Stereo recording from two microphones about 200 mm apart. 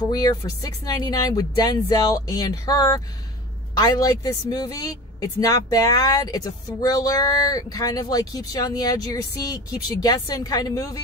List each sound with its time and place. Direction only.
0.1 s speech: 20° left (ahead or behind)